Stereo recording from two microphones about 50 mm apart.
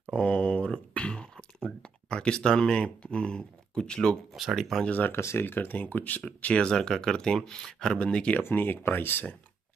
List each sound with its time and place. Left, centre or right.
0.1 s a sound: left
4.6 s speech: centre
4.8 s speech: left
5.1 s speech: left
5.5 s speech: left
6.2 s speech: left
6.7 s speech: centre
8.0 s speech: left
8.4 s speech: left